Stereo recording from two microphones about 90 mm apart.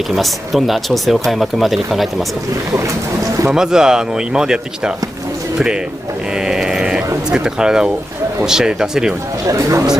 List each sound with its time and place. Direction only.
0.1 s speech: centre (ahead or behind)
3.4 s speech: 5° right (ahead or behind)
6.3 s sheep: 5° right (ahead or behind)
7.2 s speech: 10° right (ahead or behind)
9.5 s speech: 35° right (ahead or behind)